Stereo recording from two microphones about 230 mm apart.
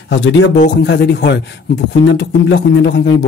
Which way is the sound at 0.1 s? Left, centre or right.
Left.